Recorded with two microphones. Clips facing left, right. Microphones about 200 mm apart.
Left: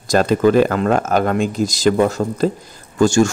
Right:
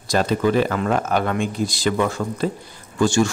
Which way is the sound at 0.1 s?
45° left (ahead or behind).